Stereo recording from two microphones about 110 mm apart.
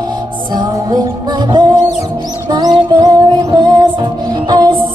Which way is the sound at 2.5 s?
40° right (ahead or behind).